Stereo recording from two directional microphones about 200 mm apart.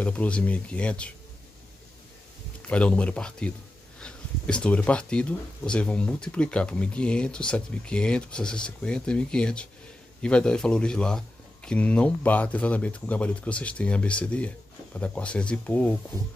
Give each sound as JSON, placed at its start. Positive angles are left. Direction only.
{"t": 0.0, "sound": "speech", "side_deg": 5}
{"t": 2.6, "sound": "speech", "side_deg": 5}